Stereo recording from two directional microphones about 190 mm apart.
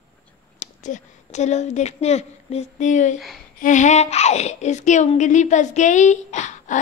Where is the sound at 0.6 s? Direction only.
40° left (ahead or behind).